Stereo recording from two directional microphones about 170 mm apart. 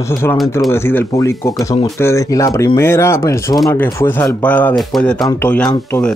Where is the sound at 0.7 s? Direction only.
15° left (ahead or behind).